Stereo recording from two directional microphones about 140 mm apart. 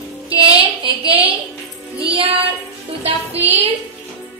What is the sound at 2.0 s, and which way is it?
Child singing, 40° right (ahead or behind).